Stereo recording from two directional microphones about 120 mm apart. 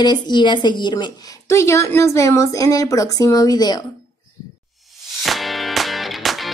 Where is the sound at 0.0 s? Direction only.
35° left (ahead or behind).